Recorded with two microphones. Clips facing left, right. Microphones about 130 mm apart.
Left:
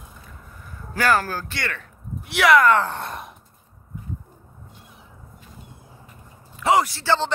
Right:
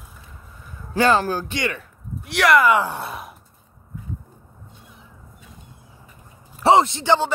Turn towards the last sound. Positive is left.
turn(degrees=-15)  # may be behind; listen again after turning